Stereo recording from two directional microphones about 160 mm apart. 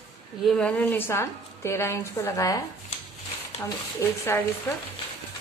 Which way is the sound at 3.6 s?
15° left (ahead or behind).